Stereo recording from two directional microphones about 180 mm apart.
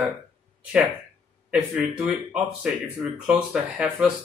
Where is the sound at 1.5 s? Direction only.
5° right (ahead or behind).